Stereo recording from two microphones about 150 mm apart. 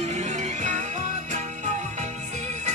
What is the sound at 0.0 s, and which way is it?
Music, 50° right (ahead or behind).